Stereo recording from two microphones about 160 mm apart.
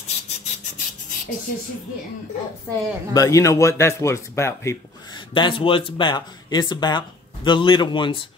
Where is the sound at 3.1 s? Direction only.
20° left (ahead or behind).